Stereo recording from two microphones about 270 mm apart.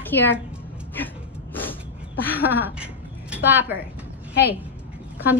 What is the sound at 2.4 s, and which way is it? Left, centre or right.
A woman's voice, centre.